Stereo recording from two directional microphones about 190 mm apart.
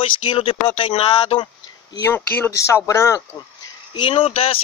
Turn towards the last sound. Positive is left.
turn(degrees=30)  # may be behind; listen again after turning